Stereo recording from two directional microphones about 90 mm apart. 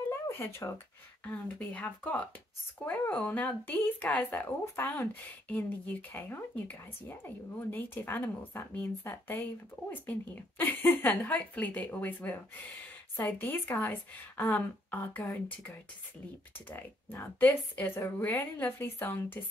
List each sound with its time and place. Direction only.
0.3 s speech: 25° left (ahead or behind)
4.5 s speech: 30° left (ahead or behind)